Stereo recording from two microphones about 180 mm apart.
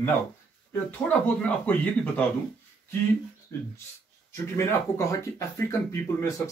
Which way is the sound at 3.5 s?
15° left (ahead or behind).